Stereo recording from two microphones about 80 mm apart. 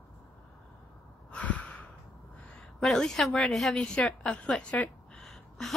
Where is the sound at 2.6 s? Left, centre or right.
Centre.